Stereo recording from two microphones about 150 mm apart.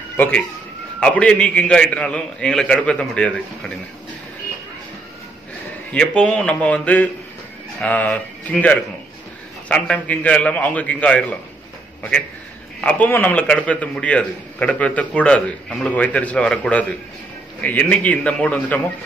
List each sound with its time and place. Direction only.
0.9 s a man's voice: 5° left (ahead or behind)
5.9 s a man's voice: 5° left (ahead or behind)
12.8 s a man's voice: 10° left (ahead or behind)